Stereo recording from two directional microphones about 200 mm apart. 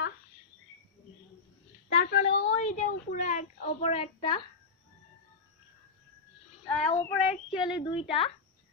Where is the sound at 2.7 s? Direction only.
35° left (ahead or behind).